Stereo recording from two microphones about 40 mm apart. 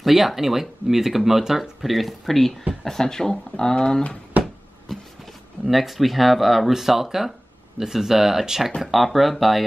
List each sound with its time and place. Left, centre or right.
0.0 s speech: centre; by 4.2 s left
4.9 s vehicle: centre
5.7 s speech: centre